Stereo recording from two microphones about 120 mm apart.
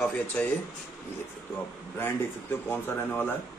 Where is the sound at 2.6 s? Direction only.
20° left (ahead or behind).